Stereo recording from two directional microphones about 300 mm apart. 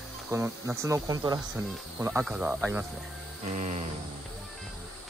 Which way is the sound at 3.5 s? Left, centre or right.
Right.